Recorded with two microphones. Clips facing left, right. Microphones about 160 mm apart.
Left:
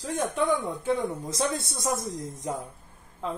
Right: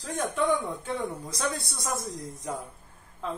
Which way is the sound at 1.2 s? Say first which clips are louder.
Left 3 dB; 25° left (ahead or behind).